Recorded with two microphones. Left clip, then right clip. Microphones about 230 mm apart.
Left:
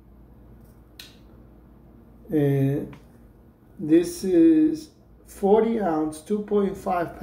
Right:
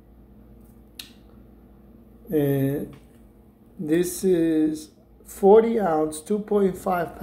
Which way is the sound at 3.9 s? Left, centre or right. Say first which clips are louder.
Left 1 dB; right.